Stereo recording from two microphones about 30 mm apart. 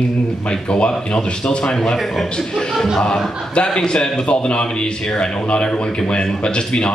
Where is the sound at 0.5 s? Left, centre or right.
Left.